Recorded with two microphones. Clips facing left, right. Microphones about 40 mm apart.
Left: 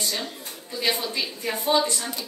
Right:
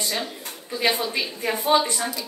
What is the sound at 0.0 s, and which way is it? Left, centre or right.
A woman's voice, centre.